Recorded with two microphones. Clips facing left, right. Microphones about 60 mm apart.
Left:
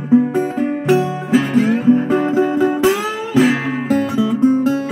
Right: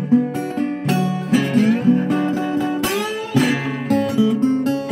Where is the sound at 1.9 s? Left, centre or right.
Left.